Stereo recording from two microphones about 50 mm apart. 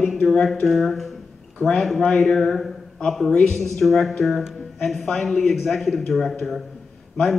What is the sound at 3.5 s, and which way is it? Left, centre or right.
A man's voice, centre.